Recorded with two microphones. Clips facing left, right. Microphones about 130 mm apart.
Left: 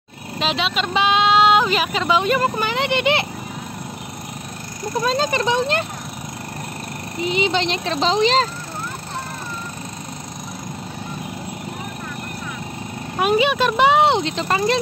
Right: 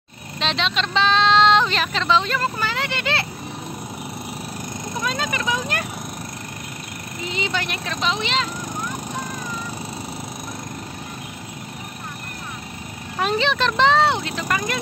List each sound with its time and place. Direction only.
0.4 s speech: 5° left (ahead or behind)
5.0 s speech: 30° left (ahead or behind)
7.2 s speech: 20° left (ahead or behind); by 8.5 s 35° left (ahead or behind)
13.2 s speech: 10° left (ahead or behind); by 14.8 s 25° left (ahead or behind)